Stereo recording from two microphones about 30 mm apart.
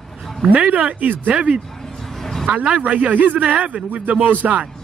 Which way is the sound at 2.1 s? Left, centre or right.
Centre.